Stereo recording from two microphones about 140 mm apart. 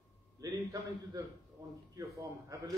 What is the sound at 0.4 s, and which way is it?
A man's voice, 25° right (ahead or behind).